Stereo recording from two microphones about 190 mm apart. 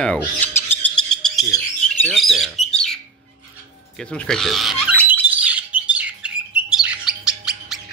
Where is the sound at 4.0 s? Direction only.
5° left (ahead or behind).